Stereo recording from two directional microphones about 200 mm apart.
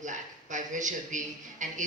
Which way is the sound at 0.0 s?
40° right (ahead or behind).